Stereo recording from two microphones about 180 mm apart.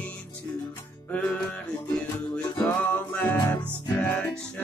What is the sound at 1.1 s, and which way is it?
Music, 5° left (ahead or behind).